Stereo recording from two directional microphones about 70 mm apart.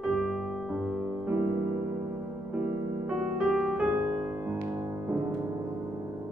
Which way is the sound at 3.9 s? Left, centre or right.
Right.